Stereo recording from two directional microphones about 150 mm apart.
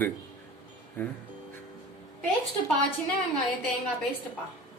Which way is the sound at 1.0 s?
15° left (ahead or behind).